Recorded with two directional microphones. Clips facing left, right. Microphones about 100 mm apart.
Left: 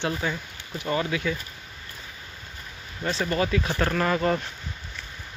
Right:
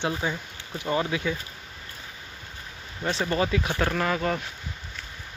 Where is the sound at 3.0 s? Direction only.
20° right (ahead or behind).